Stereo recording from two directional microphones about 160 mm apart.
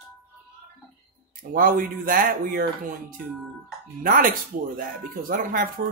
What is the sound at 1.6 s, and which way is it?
Speech, 60° right (ahead or behind).